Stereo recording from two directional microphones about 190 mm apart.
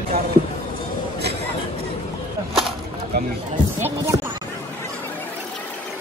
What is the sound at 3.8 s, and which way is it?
Speech, 15° right (ahead or behind).